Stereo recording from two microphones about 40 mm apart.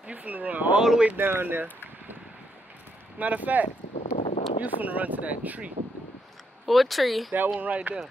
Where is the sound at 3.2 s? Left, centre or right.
Right.